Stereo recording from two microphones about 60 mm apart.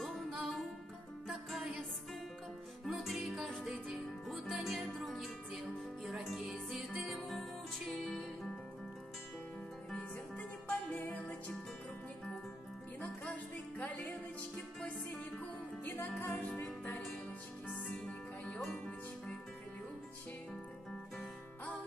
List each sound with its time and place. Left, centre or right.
0.0 s music: centre
9.8 s music: centre
13.0 s music: left
15.8 s music: left
17.9 s music: centre